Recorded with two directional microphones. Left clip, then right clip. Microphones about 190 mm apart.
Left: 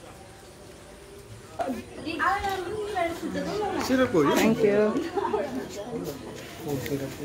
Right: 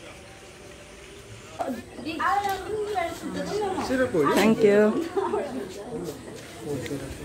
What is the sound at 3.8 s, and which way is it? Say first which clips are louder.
Speech: left 3 dB; 45° left (ahead or behind).